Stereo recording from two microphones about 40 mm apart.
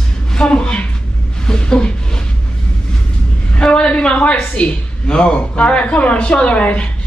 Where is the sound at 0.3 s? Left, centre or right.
Left.